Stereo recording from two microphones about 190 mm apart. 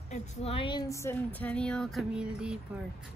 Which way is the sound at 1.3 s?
5° left (ahead or behind).